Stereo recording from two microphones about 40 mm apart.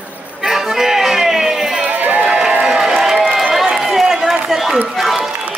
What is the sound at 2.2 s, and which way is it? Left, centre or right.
Crowd, centre.